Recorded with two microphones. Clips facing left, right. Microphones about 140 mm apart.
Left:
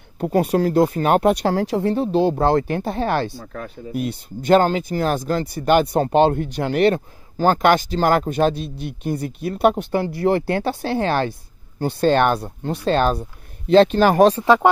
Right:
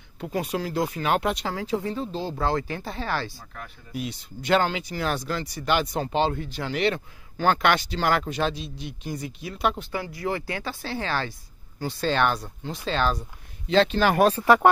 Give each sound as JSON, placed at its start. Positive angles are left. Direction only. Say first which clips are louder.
{"t": 0.2, "sound": "speech", "louder": "left 10 dB", "side_deg": 55}
{"t": 1.3, "sound": "speech", "louder": "left 8 dB", "side_deg": 65}
{"t": 7.3, "sound": "speech", "louder": "left 6 dB", "side_deg": 40}
{"t": 14.3, "sound": "speech", "louder": "left 3 dB", "side_deg": 20}